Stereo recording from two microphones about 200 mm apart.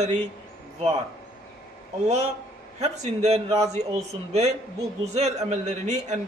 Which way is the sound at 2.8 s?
35° right (ahead or behind).